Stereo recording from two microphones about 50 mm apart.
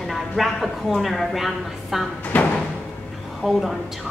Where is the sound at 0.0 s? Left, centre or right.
Centre.